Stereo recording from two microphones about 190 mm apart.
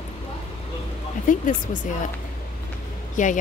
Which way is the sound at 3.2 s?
40° left (ahead or behind).